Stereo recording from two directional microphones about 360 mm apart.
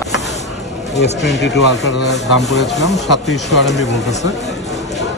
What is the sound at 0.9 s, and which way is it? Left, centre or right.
Speech, left.